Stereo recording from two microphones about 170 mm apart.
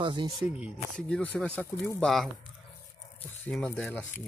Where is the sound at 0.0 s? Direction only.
30° right (ahead or behind).